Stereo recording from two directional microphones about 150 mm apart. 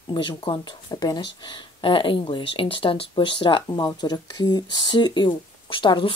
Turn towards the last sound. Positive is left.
turn(degrees=35)  # may be behind; listen again after turning